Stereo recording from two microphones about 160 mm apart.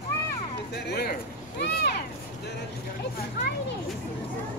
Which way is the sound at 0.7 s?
90° left.